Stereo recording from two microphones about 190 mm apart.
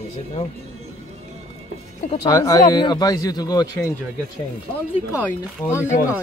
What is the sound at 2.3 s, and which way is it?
Speech, 15° left (ahead or behind).